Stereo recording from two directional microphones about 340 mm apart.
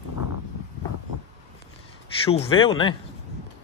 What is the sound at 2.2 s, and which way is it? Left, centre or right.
Speech, centre.